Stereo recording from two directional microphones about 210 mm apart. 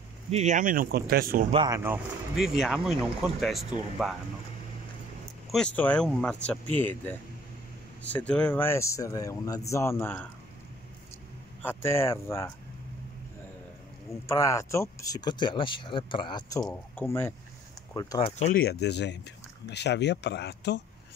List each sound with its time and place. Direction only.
0.3 s speech: 35° right (ahead or behind)
1.5 s speech: 20° right (ahead or behind)
1.8 s speech: 5° right (ahead or behind)
5.5 s speech: 5° left (ahead or behind)
11.6 s speech: 10° left (ahead or behind)
14.2 s speech: 15° left (ahead or behind)
18.2 s speech: 30° left (ahead or behind)
18.6 s speech: 50° left (ahead or behind)